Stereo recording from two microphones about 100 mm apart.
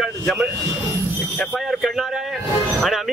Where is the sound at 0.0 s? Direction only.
5° right (ahead or behind).